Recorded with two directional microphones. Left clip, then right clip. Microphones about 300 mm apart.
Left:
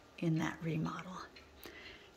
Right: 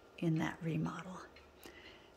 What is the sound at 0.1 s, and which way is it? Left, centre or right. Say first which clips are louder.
Speech: even; centre.